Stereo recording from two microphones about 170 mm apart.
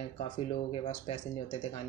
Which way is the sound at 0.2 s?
35° left (ahead or behind).